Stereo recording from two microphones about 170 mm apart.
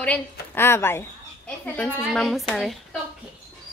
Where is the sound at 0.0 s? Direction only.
10° left (ahead or behind).